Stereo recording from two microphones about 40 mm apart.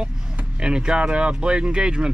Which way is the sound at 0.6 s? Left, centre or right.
Right.